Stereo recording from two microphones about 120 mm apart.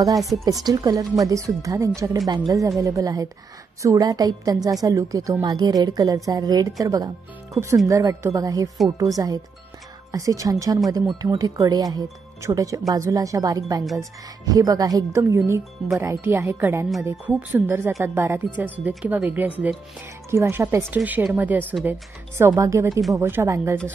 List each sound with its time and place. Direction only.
0.0 s a woman's voice: 30° right (ahead or behind)
22.6 s speech: 25° right (ahead or behind)